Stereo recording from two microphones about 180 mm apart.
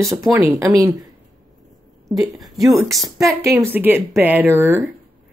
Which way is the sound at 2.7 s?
Centre (ahead or behind).